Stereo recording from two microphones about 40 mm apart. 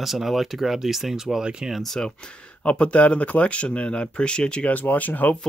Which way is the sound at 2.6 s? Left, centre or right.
Left.